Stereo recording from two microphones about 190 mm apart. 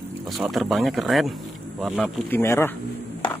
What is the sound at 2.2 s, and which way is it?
Speech, 10° left (ahead or behind).